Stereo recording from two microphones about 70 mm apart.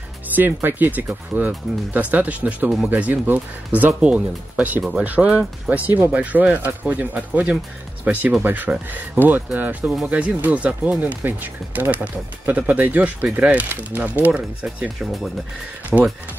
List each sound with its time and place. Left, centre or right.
0.5 s speech: right
15.9 s speech: centre